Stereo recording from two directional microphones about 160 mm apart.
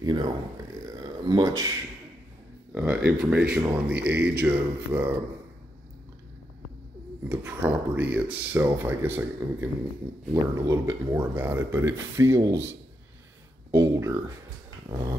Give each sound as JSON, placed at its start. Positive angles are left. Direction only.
{"t": 0.0, "sound": "dog", "side_deg": -25}
{"t": 0.8, "sound": "a sound", "side_deg": -25}
{"t": 2.7, "sound": "speech", "side_deg": -5}
{"t": 7.2, "sound": "speech", "side_deg": -15}
{"t": 14.9, "sound": "dog", "side_deg": -25}